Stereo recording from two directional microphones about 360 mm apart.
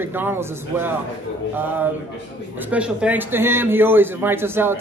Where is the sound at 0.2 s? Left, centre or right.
Centre.